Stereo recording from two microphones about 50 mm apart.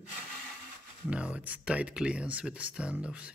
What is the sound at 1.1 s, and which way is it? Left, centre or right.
Speech, right.